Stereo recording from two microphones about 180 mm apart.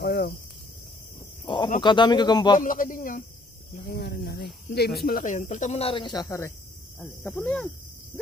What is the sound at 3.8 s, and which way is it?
Speech, 60° left (ahead or behind).